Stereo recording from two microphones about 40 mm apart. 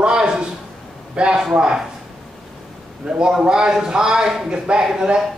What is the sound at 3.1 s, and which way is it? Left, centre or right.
A man's voice, centre.